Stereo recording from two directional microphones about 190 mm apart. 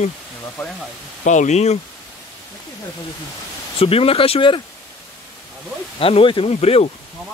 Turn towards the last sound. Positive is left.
turn(degrees=35)  # may be behind; listen again after turning